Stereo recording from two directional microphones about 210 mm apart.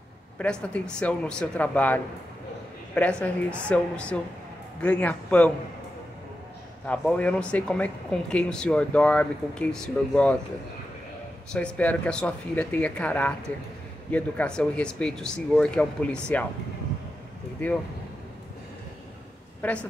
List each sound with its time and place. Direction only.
0.4 s speech: 5° left (ahead or behind)
6.9 s speech: 5° left (ahead or behind)
11.5 s speech: 5° left (ahead or behind)
17.6 s speech: 10° left (ahead or behind)
19.6 s speech: 5° left (ahead or behind)